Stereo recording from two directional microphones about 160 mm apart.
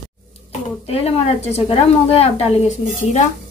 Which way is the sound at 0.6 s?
40° left (ahead or behind).